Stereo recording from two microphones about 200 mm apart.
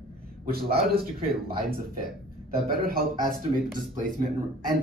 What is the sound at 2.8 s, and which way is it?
Speech, 45° right (ahead or behind).